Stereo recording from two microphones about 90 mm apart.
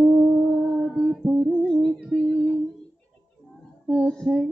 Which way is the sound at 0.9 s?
10° right (ahead or behind).